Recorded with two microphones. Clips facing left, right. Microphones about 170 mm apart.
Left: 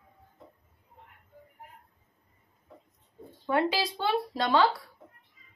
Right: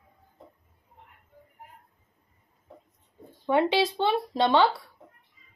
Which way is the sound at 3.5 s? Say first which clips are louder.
Right 4 dB; 25° right (ahead or behind).